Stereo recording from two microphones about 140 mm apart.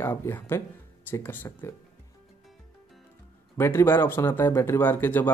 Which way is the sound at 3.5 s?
20° left (ahead or behind).